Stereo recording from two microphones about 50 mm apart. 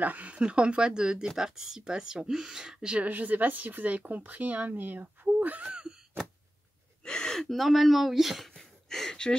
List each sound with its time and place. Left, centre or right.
0.0 s speech: right
3.1 s speech: right
7.1 s gasp: centre